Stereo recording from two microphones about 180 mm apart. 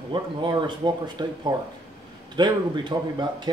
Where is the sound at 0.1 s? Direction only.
25° right (ahead or behind).